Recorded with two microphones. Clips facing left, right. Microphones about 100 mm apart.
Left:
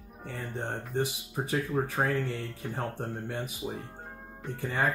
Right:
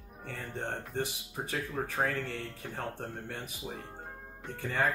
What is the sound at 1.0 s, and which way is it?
Speech, 15° left (ahead or behind).